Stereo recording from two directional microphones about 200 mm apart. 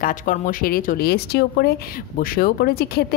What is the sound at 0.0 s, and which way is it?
Speech, 40° left (ahead or behind).